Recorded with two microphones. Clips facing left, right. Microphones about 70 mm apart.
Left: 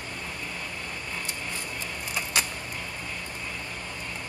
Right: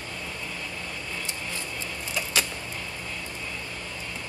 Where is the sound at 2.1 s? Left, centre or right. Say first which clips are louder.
Right 1 dB; centre.